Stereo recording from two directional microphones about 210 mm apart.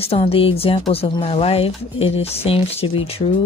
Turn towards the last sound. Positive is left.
turn(degrees=25)  # may be behind; listen again after turning